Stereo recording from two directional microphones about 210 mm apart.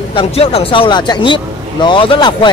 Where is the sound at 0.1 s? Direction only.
25° left (ahead or behind).